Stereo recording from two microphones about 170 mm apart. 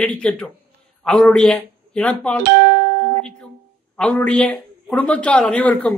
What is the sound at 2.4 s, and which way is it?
Music, 65° right (ahead or behind).